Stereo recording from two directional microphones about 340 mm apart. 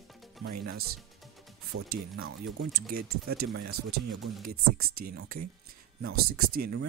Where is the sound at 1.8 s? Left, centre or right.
Right.